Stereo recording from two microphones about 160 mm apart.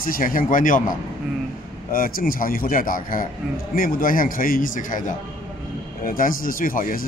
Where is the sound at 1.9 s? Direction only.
65° left (ahead or behind).